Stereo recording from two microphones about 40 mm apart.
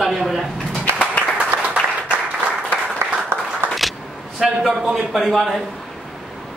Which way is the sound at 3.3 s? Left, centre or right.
Right.